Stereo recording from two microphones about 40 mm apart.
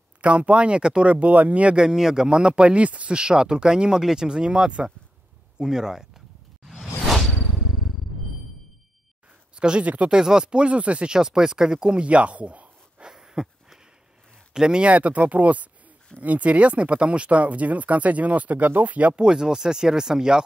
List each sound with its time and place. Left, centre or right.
0.2 s speech: right
1.1 s speech: right
1.8 s speech: centre
6.7 s whoosh: centre
9.6 s speech: right
10.1 s speech: centre
11.1 s speech: centre
12.1 s speech: right
13.1 s a sound: centre
14.5 s speech: centre
14.9 s speech: right
19.1 s speech: centre